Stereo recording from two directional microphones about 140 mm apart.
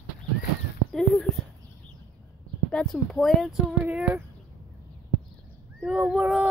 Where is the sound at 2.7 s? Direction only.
5° left (ahead or behind).